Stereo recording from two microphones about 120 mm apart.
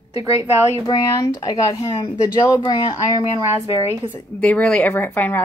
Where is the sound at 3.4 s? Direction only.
25° right (ahead or behind).